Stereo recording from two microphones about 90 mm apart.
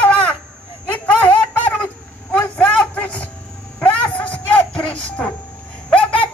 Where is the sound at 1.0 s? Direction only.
15° left (ahead or behind).